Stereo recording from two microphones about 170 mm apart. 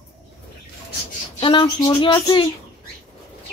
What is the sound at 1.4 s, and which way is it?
Speech, 25° left (ahead or behind).